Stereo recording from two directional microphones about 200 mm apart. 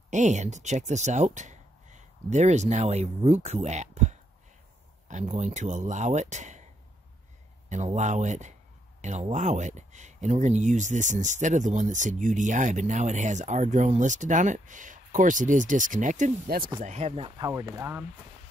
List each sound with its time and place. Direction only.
0.1 s speech: 35° right (ahead or behind)
7.7 s speech: 35° right (ahead or behind)
17.5 s speech: 15° right (ahead or behind)